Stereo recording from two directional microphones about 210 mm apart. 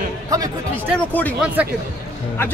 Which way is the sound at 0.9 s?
10° left (ahead or behind).